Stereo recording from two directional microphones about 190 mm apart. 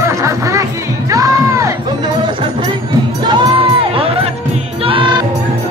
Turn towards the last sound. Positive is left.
turn(degrees=-25)  # may be behind; listen again after turning